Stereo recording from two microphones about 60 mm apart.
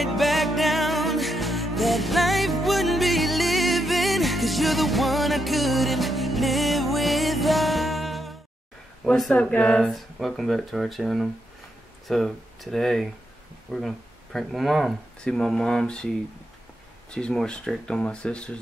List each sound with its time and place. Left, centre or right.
0.0 s music: centre
9.3 s speech: centre
15.2 s speech: centre
17.1 s speech: centre